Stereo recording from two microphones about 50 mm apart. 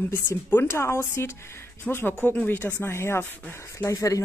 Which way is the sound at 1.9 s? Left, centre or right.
Left.